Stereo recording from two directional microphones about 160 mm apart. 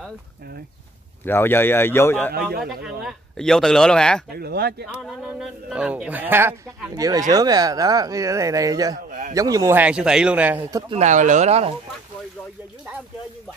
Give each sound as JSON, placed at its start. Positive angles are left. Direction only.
{"t": 1.2, "sound": "speech", "side_deg": 15}
{"t": 2.6, "sound": "speech", "side_deg": 0}
{"t": 4.3, "sound": "speech", "side_deg": -75}
{"t": 5.0, "sound": "speech", "side_deg": -5}
{"t": 7.0, "sound": "speech", "side_deg": -20}
{"t": 8.9, "sound": "a man's voice", "side_deg": -55}
{"t": 9.3, "sound": "a man's voice", "side_deg": -20}
{"t": 10.9, "sound": "speech", "side_deg": -45}